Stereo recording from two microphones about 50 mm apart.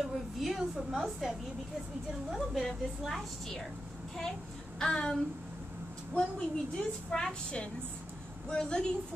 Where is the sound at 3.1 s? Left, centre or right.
Centre.